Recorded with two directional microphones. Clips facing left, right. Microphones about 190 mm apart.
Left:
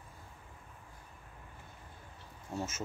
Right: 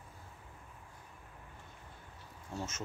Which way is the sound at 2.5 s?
10° left (ahead or behind).